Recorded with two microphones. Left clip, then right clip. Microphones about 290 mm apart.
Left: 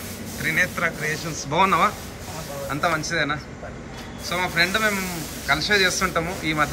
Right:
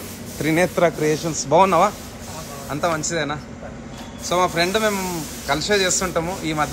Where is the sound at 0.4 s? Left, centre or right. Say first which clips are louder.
Right 4 dB; centre.